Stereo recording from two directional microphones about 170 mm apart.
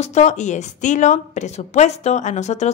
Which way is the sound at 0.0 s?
45° left (ahead or behind).